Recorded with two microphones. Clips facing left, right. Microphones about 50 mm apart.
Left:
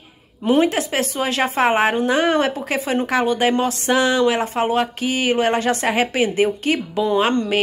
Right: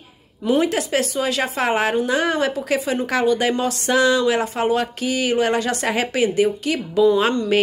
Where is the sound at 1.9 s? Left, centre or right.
Left.